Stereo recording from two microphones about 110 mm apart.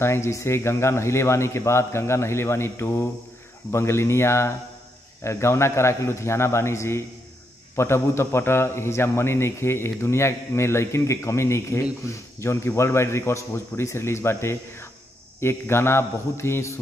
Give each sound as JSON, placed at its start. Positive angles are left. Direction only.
{"t": 0.0, "sound": "a man's voice", "side_deg": 25}